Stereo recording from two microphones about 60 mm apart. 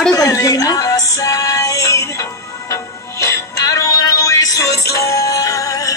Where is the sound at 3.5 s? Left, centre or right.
Left.